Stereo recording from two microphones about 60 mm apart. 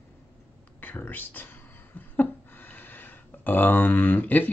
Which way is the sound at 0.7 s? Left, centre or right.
Left.